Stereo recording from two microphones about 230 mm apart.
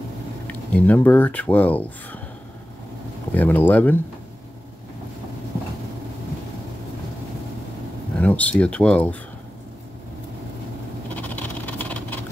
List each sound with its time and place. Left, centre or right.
0.5 s speech: centre
3.3 s speech: centre
8.2 s speech: centre
11.1 s vehicle: centre